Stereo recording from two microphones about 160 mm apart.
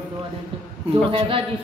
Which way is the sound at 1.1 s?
35° right (ahead or behind).